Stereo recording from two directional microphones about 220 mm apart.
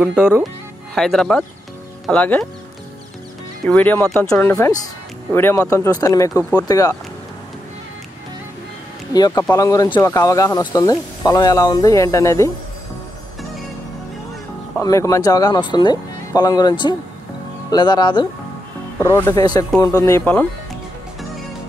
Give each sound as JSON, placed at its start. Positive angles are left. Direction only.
{"t": 0.0, "sound": "speech", "side_deg": -5}
{"t": 3.6, "sound": "speech", "side_deg": 5}
{"t": 9.1, "sound": "speech", "side_deg": 15}
{"t": 14.8, "sound": "speech", "side_deg": 15}